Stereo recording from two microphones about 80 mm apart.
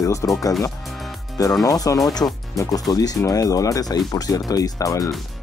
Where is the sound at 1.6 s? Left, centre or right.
Left.